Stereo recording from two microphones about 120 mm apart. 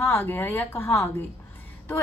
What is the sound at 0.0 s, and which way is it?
A woman's voice, 20° left (ahead or behind).